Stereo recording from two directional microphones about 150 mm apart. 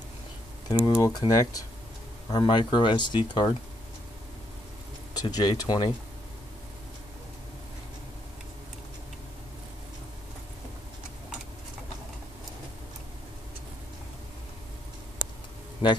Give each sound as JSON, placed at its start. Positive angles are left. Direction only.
{"t": 0.7, "sound": "speech", "side_deg": 25}
{"t": 5.1, "sound": "speech", "side_deg": 25}